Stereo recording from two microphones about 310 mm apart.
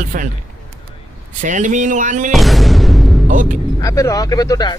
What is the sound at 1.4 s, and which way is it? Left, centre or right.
Speech, right.